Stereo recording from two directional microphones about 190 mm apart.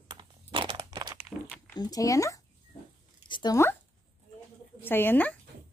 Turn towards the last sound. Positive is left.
turn(degrees=10)  # may be behind; listen again after turning